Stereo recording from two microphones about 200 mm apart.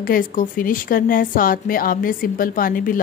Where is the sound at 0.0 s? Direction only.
45° left (ahead or behind).